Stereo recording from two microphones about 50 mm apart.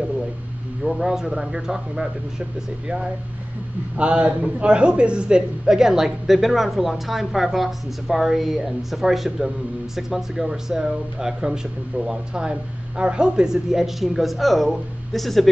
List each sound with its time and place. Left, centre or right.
0.8 s speech: centre
3.9 s a man's voice: right; by 15.4 s centre